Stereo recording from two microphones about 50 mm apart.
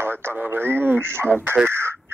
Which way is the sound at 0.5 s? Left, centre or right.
Right.